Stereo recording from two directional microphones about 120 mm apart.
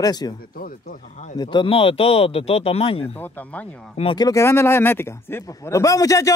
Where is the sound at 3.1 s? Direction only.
15° left (ahead or behind).